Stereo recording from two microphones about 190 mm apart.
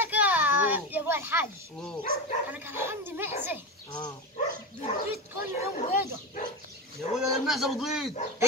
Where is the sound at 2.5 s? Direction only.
10° right (ahead or behind).